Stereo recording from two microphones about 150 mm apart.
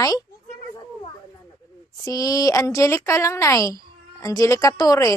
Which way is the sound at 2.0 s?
20° left (ahead or behind).